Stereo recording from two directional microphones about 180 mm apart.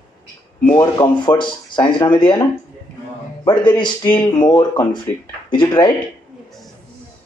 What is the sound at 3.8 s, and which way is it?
Speech, 25° left (ahead or behind).